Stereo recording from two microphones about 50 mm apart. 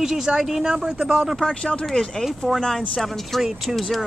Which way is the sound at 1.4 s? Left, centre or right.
Centre.